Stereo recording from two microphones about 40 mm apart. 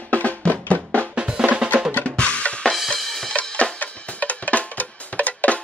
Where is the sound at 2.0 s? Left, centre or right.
Left.